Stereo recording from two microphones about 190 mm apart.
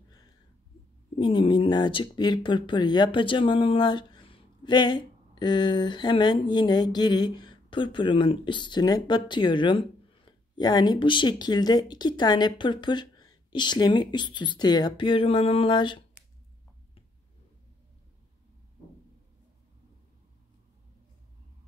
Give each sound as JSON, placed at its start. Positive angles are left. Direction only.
{"t": 1.1, "sound": "speech", "side_deg": 25}